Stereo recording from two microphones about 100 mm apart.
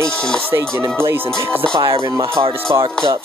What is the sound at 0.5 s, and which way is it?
Music, 25° right (ahead or behind).